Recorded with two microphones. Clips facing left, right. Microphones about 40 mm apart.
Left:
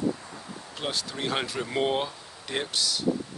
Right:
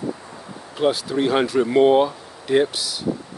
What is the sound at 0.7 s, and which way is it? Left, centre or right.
Speech, centre.